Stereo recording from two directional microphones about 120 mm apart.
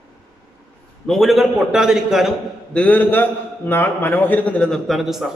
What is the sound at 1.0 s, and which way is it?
A man's voice, centre (ahead or behind).